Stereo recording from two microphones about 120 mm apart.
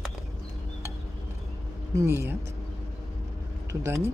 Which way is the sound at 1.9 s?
20° right (ahead or behind).